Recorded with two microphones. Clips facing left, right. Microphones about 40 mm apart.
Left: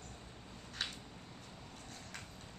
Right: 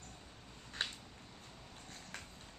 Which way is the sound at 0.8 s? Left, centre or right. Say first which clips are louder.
Right 1 dB; right.